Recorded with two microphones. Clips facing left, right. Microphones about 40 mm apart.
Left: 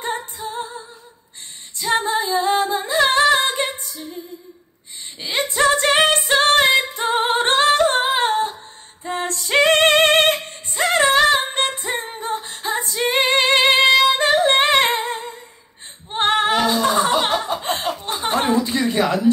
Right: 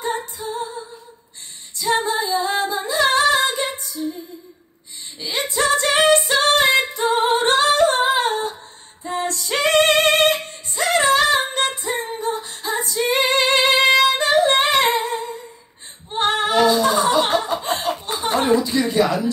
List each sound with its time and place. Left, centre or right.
0.2 s music: left
1.8 s female singing: left
5.5 s female singing: left
6.1 s music: left
6.9 s female singing: left
13.9 s music: left
17.5 s chuckle: left
18.6 s a sound: left